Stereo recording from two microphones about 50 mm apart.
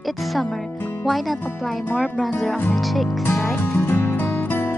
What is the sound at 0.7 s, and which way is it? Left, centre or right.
Music, left.